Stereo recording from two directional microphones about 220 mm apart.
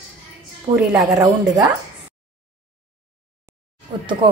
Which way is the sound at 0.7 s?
25° right (ahead or behind).